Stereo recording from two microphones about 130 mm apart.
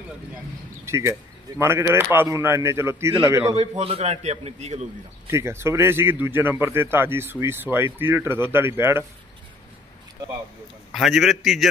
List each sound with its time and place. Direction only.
0.8 s a man's voice: 20° right (ahead or behind)
3.5 s a man's voice: 50° right (ahead or behind)
5.3 s a man's voice: 20° right (ahead or behind)
10.9 s a man's voice: centre (ahead or behind)